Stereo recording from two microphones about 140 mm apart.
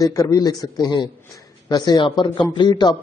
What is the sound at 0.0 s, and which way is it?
A man's voice, 25° left (ahead or behind).